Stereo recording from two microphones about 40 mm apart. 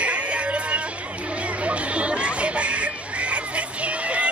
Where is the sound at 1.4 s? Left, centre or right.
Right.